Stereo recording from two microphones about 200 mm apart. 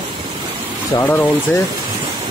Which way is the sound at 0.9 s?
10° left (ahead or behind).